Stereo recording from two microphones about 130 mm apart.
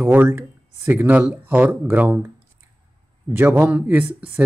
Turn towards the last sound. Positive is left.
turn(degrees=-15)  # may be behind; listen again after turning